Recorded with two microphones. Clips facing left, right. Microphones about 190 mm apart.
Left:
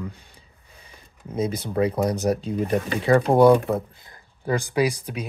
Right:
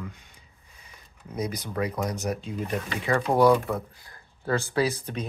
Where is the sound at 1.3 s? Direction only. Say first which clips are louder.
Left 6 dB; 25° left (ahead or behind).